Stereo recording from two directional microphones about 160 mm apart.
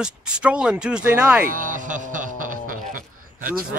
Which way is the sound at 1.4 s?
60° right (ahead or behind).